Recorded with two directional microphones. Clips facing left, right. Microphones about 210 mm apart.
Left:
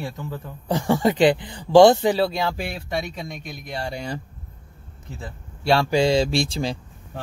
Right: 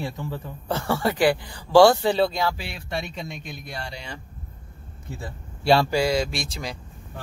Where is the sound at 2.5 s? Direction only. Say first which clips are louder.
Left 6 dB; 50° left (ahead or behind).